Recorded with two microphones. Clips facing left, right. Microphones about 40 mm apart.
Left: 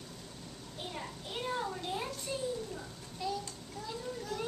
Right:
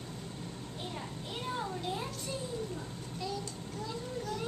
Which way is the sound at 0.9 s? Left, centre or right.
Centre.